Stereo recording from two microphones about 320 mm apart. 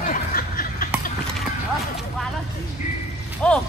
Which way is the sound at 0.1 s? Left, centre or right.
Left.